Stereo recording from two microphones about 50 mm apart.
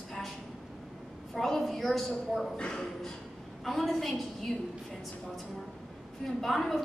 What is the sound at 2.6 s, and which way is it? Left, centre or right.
Speech, centre.